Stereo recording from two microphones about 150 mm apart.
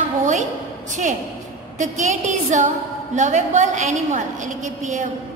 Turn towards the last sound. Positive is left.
turn(degrees=-55)  # may be behind; listen again after turning